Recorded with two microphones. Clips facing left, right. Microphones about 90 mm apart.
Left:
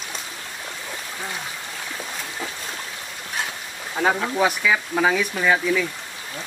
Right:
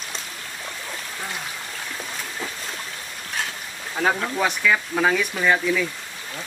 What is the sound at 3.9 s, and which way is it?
Speech, 5° left (ahead or behind).